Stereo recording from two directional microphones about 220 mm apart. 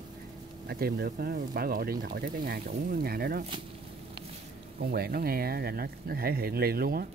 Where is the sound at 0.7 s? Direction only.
45° right (ahead or behind).